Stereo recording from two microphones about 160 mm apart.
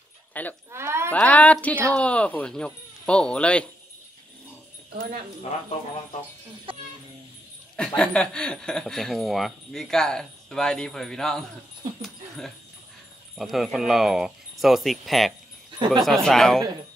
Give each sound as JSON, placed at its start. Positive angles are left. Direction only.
{"t": 0.3, "sound": "speech", "side_deg": 10}
{"t": 0.7, "sound": "speech", "side_deg": -15}
{"t": 1.1, "sound": "speech", "side_deg": 10}
{"t": 6.7, "sound": "speech", "side_deg": -35}
{"t": 7.7, "sound": "speech", "side_deg": 5}
{"t": 12.0, "sound": "dog", "side_deg": 0}
{"t": 13.4, "sound": "speech", "side_deg": 0}